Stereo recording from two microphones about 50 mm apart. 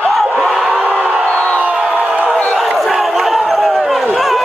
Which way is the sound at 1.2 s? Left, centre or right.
Left.